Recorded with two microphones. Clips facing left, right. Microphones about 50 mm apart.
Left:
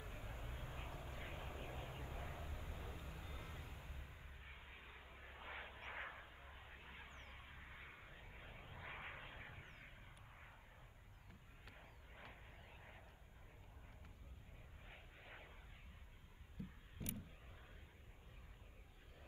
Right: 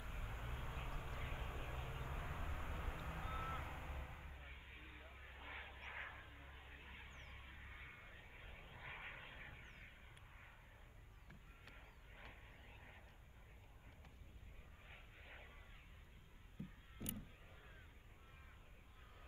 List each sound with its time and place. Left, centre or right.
0.0 s vehicle: right
4.5 s music: centre
5.1 s vehicle: centre
14.9 s vehicle: centre